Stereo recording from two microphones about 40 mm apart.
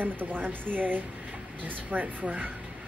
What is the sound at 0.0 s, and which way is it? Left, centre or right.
A woman's voice, right.